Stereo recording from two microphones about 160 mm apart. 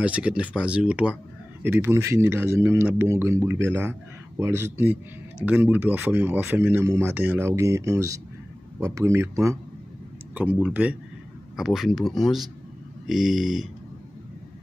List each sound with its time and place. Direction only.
0.0 s speech: 10° right (ahead or behind)